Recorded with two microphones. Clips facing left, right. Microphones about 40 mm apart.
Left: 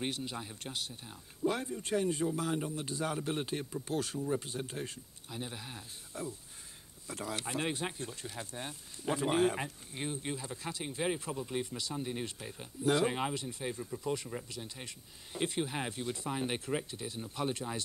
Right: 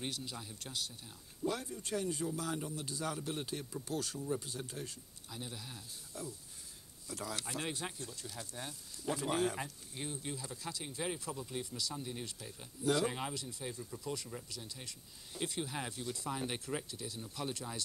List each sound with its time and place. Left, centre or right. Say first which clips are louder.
0.0 s speech: left 5 dB; left